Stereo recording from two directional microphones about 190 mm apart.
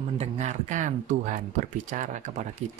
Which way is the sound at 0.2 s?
35° right (ahead or behind).